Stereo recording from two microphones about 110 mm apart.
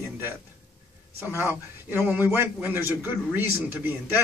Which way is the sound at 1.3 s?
20° right (ahead or behind).